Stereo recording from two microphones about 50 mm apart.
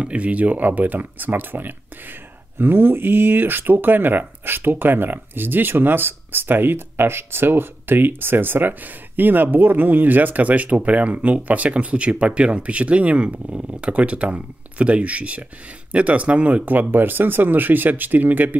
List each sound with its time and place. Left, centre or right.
0.0 s speech: right